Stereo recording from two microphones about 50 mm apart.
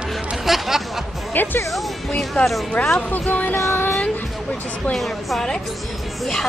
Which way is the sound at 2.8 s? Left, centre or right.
Left.